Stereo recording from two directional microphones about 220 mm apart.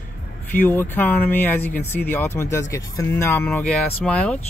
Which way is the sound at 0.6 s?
10° left (ahead or behind).